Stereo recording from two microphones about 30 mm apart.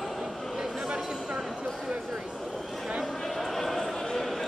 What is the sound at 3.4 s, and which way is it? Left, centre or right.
Basketball bounce, centre.